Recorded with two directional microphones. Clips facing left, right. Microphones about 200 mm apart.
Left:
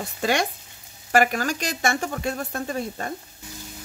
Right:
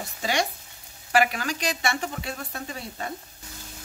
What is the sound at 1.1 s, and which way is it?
A woman's voice, 45° left (ahead or behind).